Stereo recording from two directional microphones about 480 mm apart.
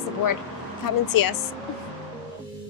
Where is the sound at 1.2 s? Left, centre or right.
Left.